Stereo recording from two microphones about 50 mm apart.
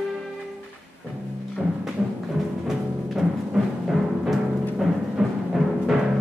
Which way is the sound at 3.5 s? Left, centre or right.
Centre.